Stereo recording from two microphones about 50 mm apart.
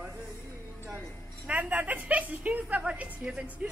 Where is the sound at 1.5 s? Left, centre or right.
Right.